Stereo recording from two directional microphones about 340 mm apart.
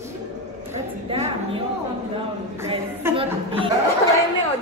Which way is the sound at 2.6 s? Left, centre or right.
Centre.